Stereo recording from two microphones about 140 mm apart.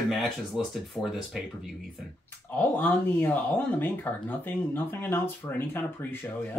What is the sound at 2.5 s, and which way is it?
Speech, 10° left (ahead or behind).